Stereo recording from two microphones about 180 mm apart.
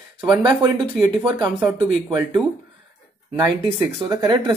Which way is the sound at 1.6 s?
10° right (ahead or behind).